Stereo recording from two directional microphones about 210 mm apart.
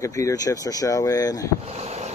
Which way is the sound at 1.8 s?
30° right (ahead or behind).